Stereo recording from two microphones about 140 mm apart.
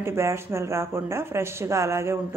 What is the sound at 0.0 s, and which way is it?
Speech, 20° right (ahead or behind).